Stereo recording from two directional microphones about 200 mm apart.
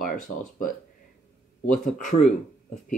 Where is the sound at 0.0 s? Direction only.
45° left (ahead or behind).